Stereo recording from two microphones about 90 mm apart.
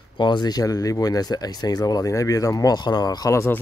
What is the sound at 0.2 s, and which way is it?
Speech, 55° left (ahead or behind).